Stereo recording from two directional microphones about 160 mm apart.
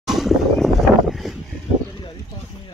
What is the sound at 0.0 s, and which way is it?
Vehicle, centre (ahead or behind).